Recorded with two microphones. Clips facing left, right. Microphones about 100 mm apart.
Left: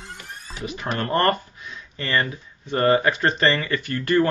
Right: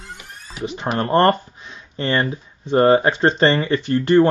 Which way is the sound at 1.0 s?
25° right (ahead or behind).